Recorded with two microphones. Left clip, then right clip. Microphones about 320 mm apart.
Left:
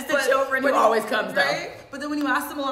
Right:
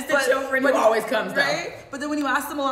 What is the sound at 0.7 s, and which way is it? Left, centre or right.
Speech, centre.